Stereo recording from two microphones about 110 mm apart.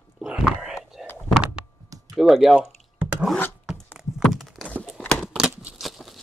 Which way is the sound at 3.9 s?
Centre (ahead or behind).